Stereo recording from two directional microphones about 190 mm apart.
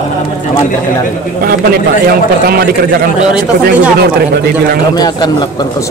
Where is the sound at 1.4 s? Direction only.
50° right (ahead or behind).